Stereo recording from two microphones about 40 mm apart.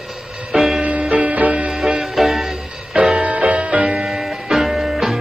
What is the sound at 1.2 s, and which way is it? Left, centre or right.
Music, right.